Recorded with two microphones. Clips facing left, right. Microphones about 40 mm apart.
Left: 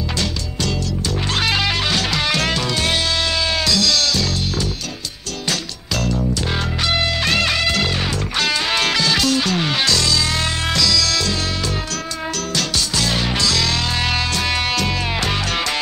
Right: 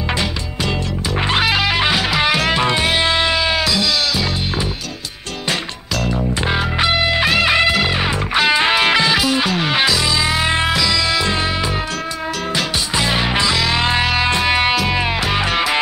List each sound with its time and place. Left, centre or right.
1.3 s music: centre
6.0 s music: right
12.5 s music: right